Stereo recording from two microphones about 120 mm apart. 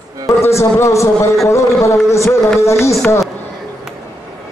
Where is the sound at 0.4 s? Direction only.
20° left (ahead or behind).